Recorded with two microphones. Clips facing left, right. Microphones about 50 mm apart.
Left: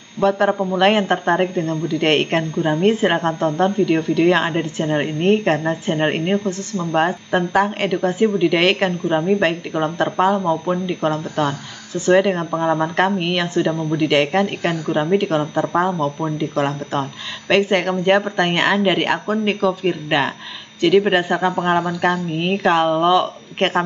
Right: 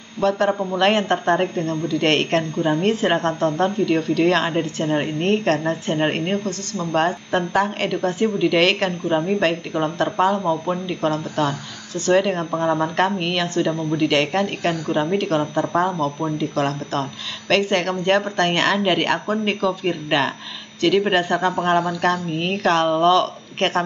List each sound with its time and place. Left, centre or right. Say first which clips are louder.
0.2 s a woman's voice: left 2 dB; centre
1.5 s a woman's voice: left 1 dB; left; by 3.7 s centre
3.9 s a woman's voice: left 2 dB; left
13.2 s a woman's voice: left 2 dB; centre